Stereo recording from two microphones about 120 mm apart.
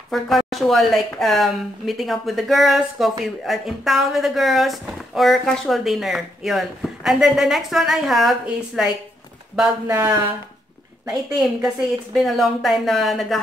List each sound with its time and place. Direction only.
0.1 s speech: centre (ahead or behind)
9.9 s speech: 20° right (ahead or behind)
11.6 s speech: centre (ahead or behind)